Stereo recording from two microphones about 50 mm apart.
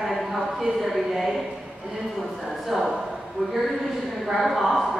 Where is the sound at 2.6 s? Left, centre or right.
Centre.